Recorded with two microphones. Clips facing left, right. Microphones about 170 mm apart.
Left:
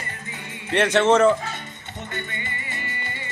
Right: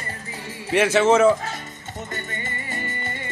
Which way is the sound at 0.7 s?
5° right (ahead or behind).